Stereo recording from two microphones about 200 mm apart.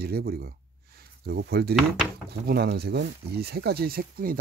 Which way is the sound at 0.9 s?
50° right (ahead or behind).